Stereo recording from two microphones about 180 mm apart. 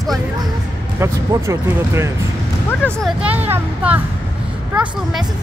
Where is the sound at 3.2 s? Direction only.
10° right (ahead or behind).